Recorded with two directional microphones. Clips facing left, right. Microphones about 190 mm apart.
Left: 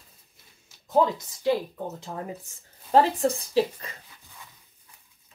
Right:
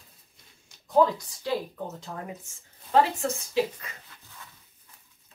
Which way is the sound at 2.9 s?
35° left (ahead or behind).